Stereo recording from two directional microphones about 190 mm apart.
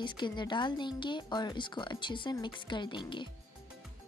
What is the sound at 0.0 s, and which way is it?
Speech, 25° left (ahead or behind).